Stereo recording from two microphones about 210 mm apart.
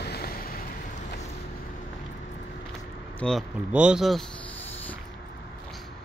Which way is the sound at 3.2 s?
Centre (ahead or behind).